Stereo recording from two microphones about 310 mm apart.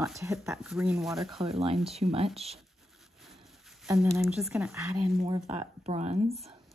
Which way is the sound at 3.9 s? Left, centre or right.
Centre.